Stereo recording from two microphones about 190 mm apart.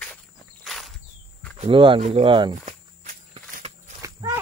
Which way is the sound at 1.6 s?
25° right (ahead or behind).